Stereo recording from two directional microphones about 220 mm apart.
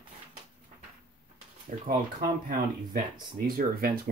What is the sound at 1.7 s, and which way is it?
Speech, 35° right (ahead or behind).